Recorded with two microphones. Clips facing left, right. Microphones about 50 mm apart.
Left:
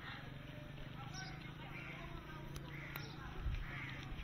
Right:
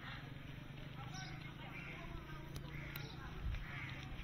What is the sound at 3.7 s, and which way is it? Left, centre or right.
Crow, centre.